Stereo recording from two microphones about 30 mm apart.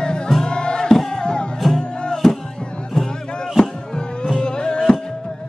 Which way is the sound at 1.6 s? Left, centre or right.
Centre.